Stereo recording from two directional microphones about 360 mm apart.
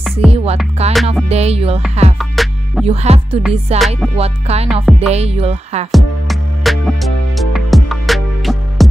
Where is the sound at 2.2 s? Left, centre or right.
Centre.